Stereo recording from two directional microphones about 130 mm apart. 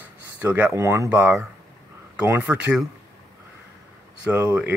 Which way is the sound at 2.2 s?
10° right (ahead or behind).